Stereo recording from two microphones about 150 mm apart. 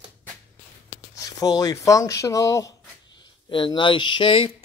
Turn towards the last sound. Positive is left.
turn(degrees=35)  # may be behind; listen again after turning